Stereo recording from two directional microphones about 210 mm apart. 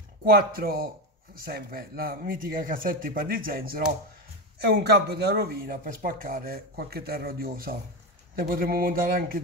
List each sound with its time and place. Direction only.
0.2 s speech: 45° right (ahead or behind)
4.8 s speech: 50° right (ahead or behind)